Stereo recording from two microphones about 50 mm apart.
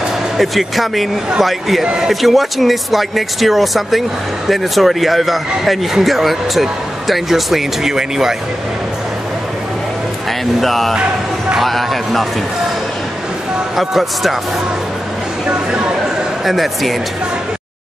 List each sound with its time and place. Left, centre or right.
0.4 s speech: centre
10.6 s speech: centre
13.7 s speech: centre
15.4 s a sound: right
16.4 s speech: centre